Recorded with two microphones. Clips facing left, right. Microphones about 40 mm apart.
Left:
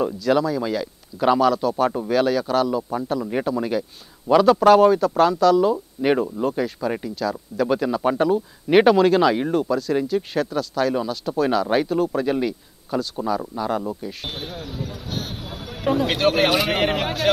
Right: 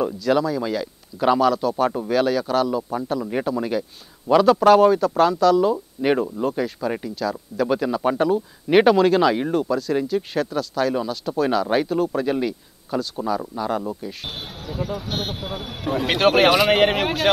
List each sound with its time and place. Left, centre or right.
0.0 s speech: centre
14.3 s speech: right